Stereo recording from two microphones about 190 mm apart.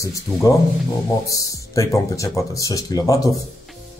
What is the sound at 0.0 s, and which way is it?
Speech, 15° left (ahead or behind).